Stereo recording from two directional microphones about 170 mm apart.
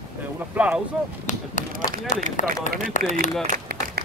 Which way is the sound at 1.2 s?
45° left (ahead or behind).